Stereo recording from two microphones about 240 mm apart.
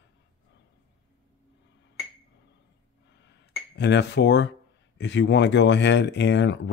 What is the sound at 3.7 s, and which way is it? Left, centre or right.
Speech, left.